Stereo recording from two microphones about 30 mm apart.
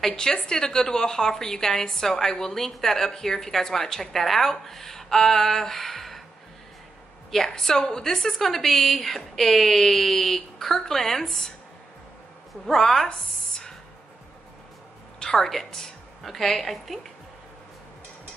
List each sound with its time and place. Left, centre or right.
0.0 s a woman's voice: centre
7.2 s a woman's voice: centre
12.6 s a woman's voice: centre
15.1 s a woman's voice: left
16.2 s a woman's voice: centre